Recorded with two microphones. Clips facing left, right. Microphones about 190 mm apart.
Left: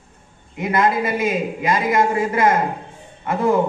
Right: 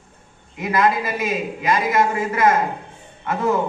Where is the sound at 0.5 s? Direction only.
25° left (ahead or behind).